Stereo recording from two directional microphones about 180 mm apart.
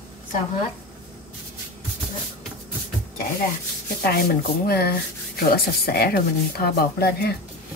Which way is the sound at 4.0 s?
60° left (ahead or behind).